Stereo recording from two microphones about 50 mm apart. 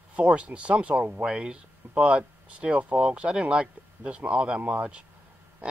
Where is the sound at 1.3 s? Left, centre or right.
Centre.